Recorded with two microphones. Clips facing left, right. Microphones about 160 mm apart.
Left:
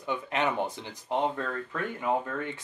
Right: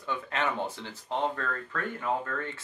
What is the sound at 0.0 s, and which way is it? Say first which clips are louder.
Speech: left 2 dB; 15° left (ahead or behind).